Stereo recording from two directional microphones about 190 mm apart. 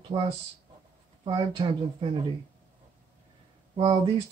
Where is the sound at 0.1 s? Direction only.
20° right (ahead or behind).